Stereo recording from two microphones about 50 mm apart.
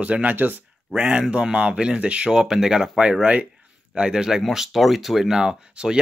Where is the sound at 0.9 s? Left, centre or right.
Centre.